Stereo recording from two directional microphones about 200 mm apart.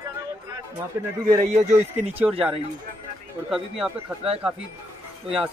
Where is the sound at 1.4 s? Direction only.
35° right (ahead or behind).